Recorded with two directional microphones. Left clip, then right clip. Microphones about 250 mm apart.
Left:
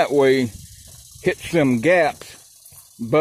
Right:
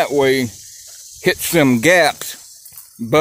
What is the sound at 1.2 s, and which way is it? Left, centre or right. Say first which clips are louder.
Speech: right 4 dB; right.